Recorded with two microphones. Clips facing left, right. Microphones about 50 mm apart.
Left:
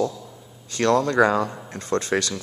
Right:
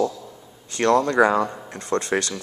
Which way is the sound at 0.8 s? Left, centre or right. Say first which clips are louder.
Right 1 dB; right.